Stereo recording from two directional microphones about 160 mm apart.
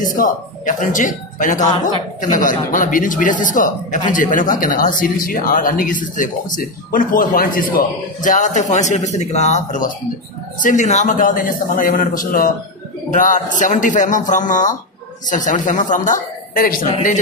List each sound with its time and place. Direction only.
0.0 s speech: 55° left (ahead or behind)